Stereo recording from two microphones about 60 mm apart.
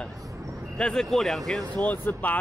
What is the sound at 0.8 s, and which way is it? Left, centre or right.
Speech, centre.